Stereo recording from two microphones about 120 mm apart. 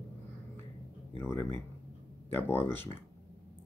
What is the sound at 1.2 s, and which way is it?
Speech, 20° left (ahead or behind).